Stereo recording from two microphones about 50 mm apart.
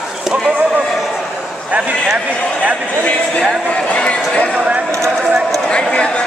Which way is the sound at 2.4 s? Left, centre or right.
Left.